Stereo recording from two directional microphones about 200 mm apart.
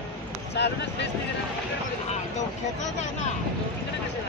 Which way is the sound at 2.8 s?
35° left (ahead or behind).